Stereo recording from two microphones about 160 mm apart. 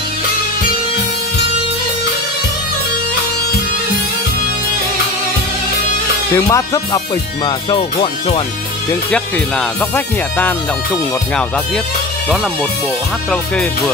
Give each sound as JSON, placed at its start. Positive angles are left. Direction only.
{"t": 6.3, "sound": "music", "side_deg": 20}
{"t": 7.4, "sound": "speech", "side_deg": 30}
{"t": 9.1, "sound": "speech", "side_deg": 10}